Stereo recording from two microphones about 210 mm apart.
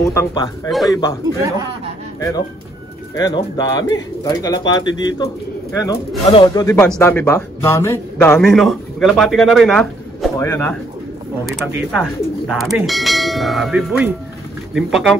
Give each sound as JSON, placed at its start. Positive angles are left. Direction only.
{"t": 0.1, "sound": "speech", "side_deg": 15}
{"t": 0.7, "sound": "a man's voice", "side_deg": 0}
{"t": 2.1, "sound": "a man's voice", "side_deg": 15}